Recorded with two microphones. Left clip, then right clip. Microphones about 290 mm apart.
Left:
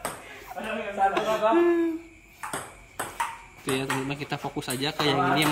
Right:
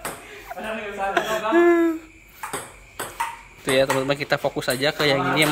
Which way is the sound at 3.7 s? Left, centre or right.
Centre.